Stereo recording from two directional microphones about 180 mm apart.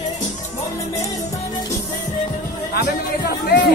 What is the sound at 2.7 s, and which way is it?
Music, 60° left (ahead or behind).